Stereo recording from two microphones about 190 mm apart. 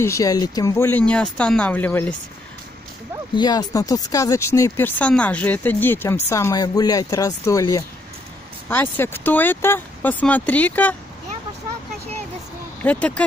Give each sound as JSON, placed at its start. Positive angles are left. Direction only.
{"t": 0.0, "sound": "speech", "side_deg": 15}
{"t": 3.3, "sound": "speech", "side_deg": 20}
{"t": 12.8, "sound": "speech", "side_deg": 10}